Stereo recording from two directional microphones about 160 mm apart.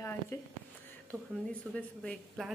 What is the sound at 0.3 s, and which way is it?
A woman's voice, 15° left (ahead or behind).